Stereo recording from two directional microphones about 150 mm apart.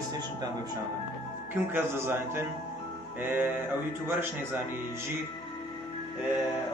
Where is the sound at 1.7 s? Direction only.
15° right (ahead or behind).